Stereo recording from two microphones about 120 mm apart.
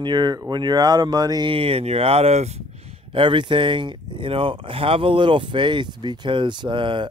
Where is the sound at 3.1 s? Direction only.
45° right (ahead or behind).